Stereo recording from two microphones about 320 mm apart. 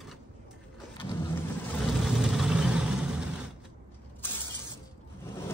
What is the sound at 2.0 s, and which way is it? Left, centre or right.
Vehicle, centre.